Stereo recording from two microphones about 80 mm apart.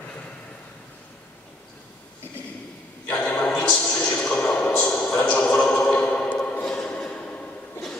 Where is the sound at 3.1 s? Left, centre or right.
Centre.